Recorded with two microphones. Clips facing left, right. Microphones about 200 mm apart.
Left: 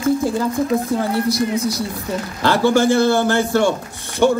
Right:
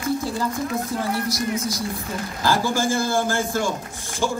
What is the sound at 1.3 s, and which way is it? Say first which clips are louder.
A woman's voice: left 6 dB; 65° left (ahead or behind).